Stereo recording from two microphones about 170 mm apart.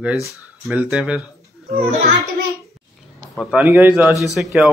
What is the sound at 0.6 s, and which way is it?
Speech, 5° right (ahead or behind).